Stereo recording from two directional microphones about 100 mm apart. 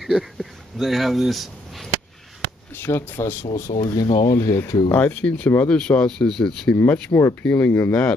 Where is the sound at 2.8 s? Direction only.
25° left (ahead or behind).